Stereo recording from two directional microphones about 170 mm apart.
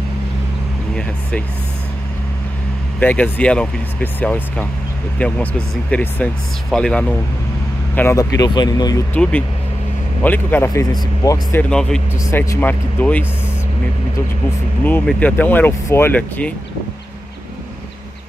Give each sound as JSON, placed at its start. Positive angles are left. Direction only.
{"t": 3.0, "sound": "speech", "side_deg": 10}
{"t": 9.1, "sound": "speech", "side_deg": 10}
{"t": 11.7, "sound": "speech", "side_deg": 5}
{"t": 14.8, "sound": "speech", "side_deg": 10}